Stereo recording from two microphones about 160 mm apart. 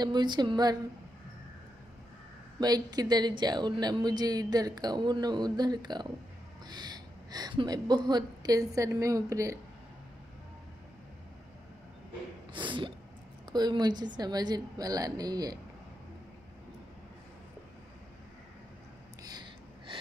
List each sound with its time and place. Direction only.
0.0 s speech: 30° right (ahead or behind)
2.6 s speech: 25° right (ahead or behind)
12.5 s speech: 30° right (ahead or behind)
19.2 s a sound: 30° right (ahead or behind)